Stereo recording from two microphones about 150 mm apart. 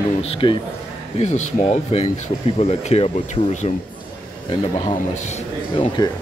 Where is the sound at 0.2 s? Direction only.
40° left (ahead or behind).